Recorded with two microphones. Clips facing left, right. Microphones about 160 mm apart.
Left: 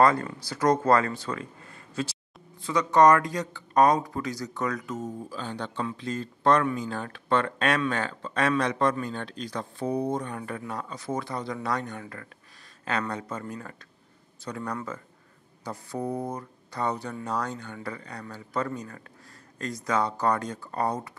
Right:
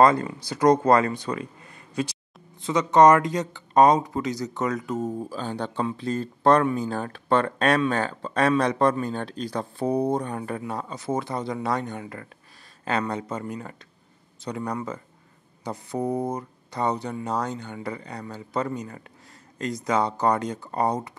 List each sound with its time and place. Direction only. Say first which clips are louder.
0.0 s speech: right 3 dB; 20° right (ahead or behind)